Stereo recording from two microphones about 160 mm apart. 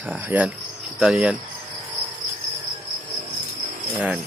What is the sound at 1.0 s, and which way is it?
Cricket, 5° right (ahead or behind).